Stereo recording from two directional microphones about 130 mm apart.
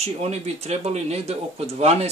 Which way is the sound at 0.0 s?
55° right (ahead or behind).